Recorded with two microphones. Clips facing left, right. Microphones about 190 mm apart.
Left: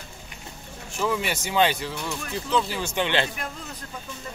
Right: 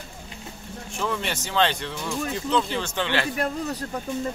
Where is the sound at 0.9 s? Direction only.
5° left (ahead or behind).